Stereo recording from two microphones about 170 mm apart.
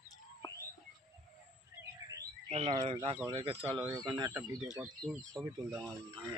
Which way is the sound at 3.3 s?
35° right (ahead or behind).